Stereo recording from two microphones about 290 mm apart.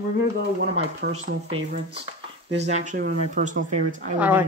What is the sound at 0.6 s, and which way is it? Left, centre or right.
Speech, right.